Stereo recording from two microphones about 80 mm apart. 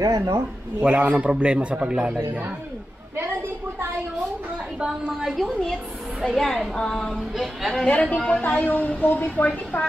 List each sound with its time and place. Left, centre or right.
0.0 s speech: right
0.7 s a man's voice: centre
3.2 s a sound: right
4.7 s a man's voice: centre
5.2 s a woman's voice: centre
7.8 s a woman's voice: centre